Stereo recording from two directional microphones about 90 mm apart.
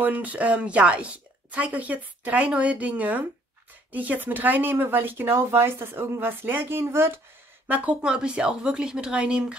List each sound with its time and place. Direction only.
0.0 s speech: 20° right (ahead or behind)
7.6 s speech: 15° right (ahead or behind)